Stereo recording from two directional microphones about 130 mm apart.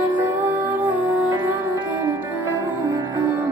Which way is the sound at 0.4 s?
15° right (ahead or behind).